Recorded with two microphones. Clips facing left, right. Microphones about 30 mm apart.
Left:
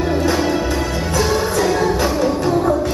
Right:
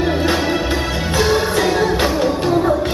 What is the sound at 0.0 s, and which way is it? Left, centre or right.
Music, right.